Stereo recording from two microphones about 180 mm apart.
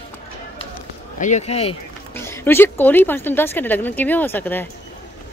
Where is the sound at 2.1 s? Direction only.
15° left (ahead or behind).